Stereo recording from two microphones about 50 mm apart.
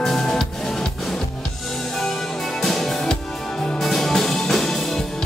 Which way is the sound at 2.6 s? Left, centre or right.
Centre.